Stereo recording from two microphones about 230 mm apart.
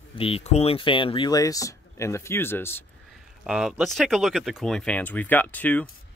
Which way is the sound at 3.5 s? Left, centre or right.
Centre.